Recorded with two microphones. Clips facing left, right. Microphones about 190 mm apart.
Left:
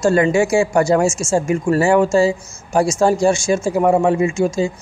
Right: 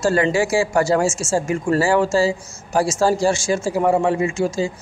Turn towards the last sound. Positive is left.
turn(degrees=20)  # may be behind; listen again after turning